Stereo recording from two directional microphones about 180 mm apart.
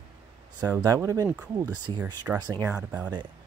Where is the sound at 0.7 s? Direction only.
20° right (ahead or behind).